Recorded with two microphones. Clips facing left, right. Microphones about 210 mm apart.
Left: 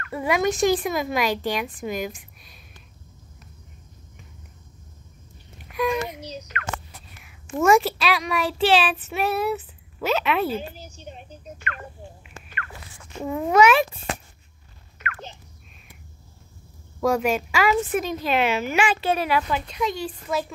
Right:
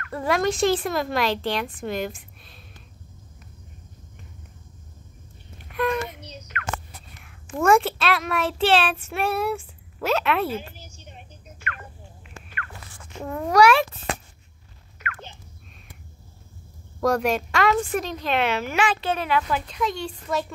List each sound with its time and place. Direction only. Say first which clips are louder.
0.1 s a woman's voice: even; 5° left (ahead or behind)
5.8 s a sound: left 1 dB; centre (ahead or behind)
7.2 s a woman's voice: left 2 dB; 5° left (ahead or behind)
10.7 s a sound: left 6 dB; 35° left (ahead or behind)
13.2 s a child's voice: even; 5° left (ahead or behind)
17.0 s a woman's voice: even; 5° left (ahead or behind)